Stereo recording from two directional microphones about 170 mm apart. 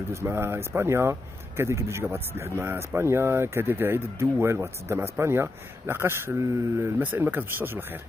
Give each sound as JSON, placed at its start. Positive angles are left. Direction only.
{"t": 0.1, "sound": "speech", "side_deg": -15}